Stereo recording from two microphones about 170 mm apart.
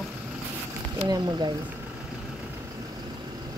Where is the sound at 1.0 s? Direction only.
25° right (ahead or behind).